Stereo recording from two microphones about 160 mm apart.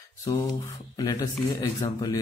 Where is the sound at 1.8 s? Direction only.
25° left (ahead or behind).